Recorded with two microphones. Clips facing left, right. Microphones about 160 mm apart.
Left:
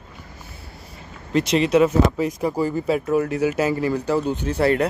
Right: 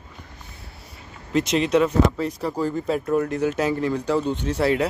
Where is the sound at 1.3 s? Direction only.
Centre (ahead or behind).